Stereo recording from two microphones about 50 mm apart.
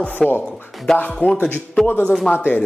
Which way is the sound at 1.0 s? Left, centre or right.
Centre.